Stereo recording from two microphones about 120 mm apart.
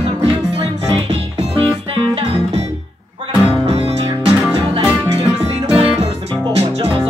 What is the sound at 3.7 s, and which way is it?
Music, 55° right (ahead or behind).